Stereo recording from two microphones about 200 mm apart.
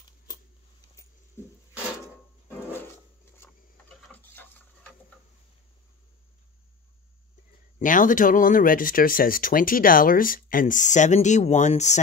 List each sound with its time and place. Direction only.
0.9 s rodents: 15° left (ahead or behind)
2.4 s drawer open or close: 10° left (ahead or behind)
3.3 s printer: 10° left (ahead or behind)
7.8 s speech: 40° left (ahead or behind)